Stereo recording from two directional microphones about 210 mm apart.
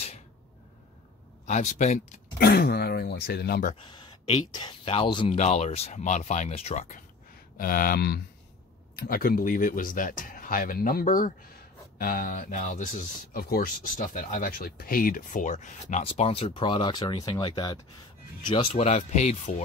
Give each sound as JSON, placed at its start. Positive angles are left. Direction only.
{"t": 1.4, "sound": "speech", "side_deg": 35}
{"t": 3.9, "sound": "speech", "side_deg": 25}